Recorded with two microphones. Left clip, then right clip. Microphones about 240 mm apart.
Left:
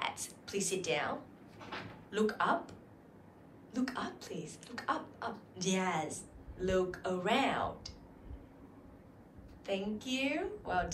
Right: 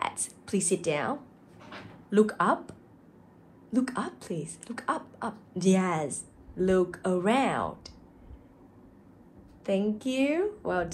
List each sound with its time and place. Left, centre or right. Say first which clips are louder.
0.0 s a woman's voice: right 6 dB; right
3.7 s speech: right 7 dB; right
9.7 s speech: right 8 dB; right